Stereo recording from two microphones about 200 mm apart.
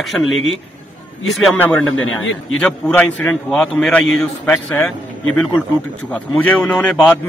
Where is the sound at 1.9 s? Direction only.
85° left.